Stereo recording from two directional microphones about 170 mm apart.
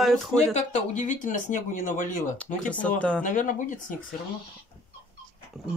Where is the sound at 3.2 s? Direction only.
50° left (ahead or behind).